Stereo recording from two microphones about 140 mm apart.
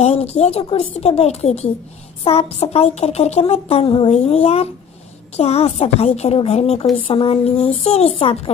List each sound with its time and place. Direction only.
0.0 s speech: 45° left (ahead or behind)